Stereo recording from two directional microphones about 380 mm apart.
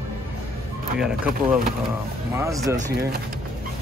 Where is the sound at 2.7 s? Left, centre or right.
Right.